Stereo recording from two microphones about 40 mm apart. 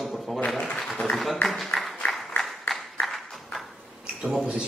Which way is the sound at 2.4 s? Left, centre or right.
Centre.